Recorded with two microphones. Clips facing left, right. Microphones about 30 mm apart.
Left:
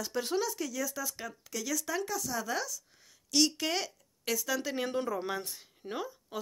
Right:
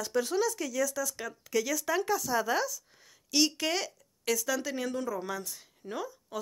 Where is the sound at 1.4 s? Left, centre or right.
Centre.